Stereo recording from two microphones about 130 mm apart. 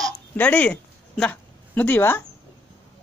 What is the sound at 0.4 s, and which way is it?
Speech, 10° left (ahead or behind).